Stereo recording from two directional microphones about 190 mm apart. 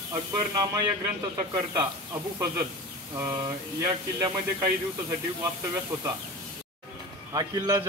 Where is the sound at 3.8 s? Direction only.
15° right (ahead or behind).